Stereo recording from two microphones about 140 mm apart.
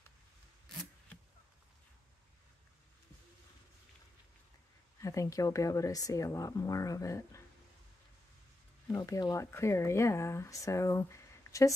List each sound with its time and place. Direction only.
5.0 s speech: 25° left (ahead or behind)
8.8 s speech: 25° left (ahead or behind)